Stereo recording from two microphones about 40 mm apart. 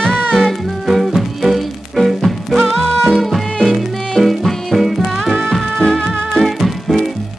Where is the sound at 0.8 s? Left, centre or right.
Centre.